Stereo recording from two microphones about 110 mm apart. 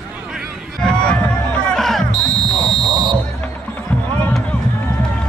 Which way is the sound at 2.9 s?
40° right (ahead or behind).